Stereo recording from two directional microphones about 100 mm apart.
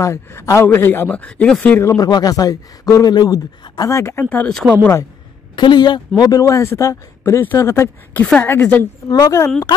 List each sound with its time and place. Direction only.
0.0 s a man's voice: 25° left (ahead or behind)
1.0 s speech: 10° left (ahead or behind)
1.9 s a man's voice: 40° left (ahead or behind)
3.9 s a man's voice: 25° left (ahead or behind)
4.5 s speech: 5° left (ahead or behind)
5.6 s a man's voice: 50° left (ahead or behind); by 8.2 s 25° left (ahead or behind)
8.2 s a man's voice: 15° left (ahead or behind)
9.1 s a man's voice: 40° left (ahead or behind)